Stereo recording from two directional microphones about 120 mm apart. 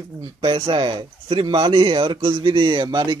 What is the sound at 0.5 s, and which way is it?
Speech, 45° right (ahead or behind).